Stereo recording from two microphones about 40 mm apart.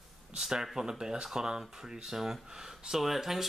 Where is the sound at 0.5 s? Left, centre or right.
Centre.